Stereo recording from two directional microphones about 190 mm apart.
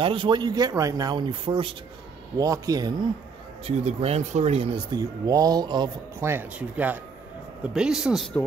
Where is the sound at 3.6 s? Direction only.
30° right (ahead or behind).